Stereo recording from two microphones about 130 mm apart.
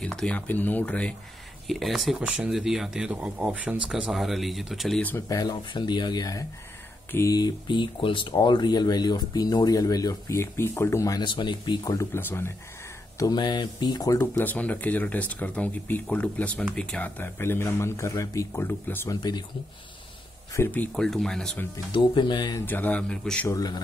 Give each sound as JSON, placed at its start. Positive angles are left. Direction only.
{"t": 0.0, "sound": "speech", "side_deg": 5}
{"t": 5.3, "sound": "speech", "side_deg": 30}
{"t": 7.1, "sound": "speech", "side_deg": 20}
{"t": 7.3, "sound": "speech", "side_deg": 35}
{"t": 11.2, "sound": "speech", "side_deg": 35}
{"t": 12.1, "sound": "speech", "side_deg": 15}
{"t": 13.2, "sound": "speech", "side_deg": 35}
{"t": 20.5, "sound": "speech", "side_deg": 15}
{"t": 20.9, "sound": "speech", "side_deg": 5}
{"t": 21.9, "sound": "speech", "side_deg": 40}
{"t": 22.7, "sound": "speech", "side_deg": 10}
{"t": 23.5, "sound": "speech", "side_deg": 30}